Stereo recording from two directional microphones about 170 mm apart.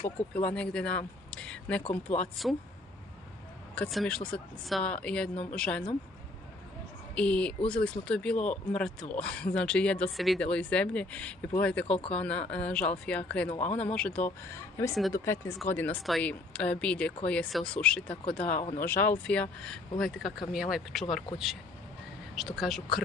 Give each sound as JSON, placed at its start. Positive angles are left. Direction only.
{"t": 0.3, "sound": "speech", "side_deg": 5}
{"t": 3.7, "sound": "speech", "side_deg": 5}
{"t": 7.2, "sound": "speech", "side_deg": 5}
{"t": 13.5, "sound": "speech", "side_deg": 45}
{"t": 13.7, "sound": "speech", "side_deg": 5}
{"t": 22.3, "sound": "speech", "side_deg": 0}